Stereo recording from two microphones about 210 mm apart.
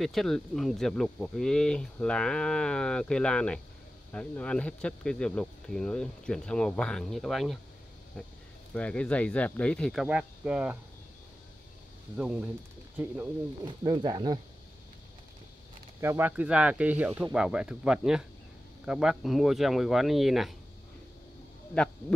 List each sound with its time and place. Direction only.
0.0 s speech: centre (ahead or behind)
8.7 s speech: 5° left (ahead or behind)
12.2 s speech: 5° right (ahead or behind)
13.7 s speech: 20° right (ahead or behind)
16.0 s speech: 10° right (ahead or behind)